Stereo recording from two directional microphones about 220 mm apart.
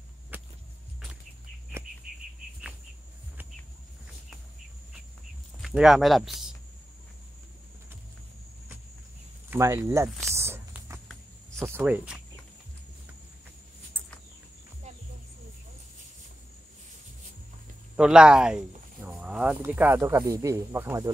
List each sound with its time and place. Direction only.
0.3 s whip: 5° right (ahead or behind)
2.0 s a sound: 40° right (ahead or behind)
5.6 s speech: 5° right (ahead or behind)
9.5 s speech: 10° right (ahead or behind)
10.3 s a sound: 10° right (ahead or behind)
11.6 s speech: 10° right (ahead or behind)
17.9 s speech: 5° right (ahead or behind)